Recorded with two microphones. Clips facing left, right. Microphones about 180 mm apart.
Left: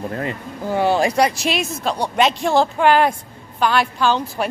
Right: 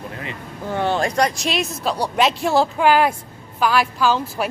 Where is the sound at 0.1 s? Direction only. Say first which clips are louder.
Left 7 dB; 45° left (ahead or behind).